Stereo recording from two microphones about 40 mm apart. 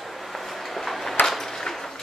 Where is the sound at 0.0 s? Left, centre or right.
Centre.